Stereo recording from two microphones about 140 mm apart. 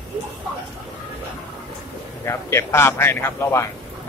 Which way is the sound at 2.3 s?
20° left (ahead or behind).